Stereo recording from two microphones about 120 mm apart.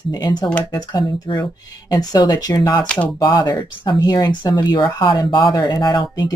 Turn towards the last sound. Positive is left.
turn(degrees=35)  # may be behind; listen again after turning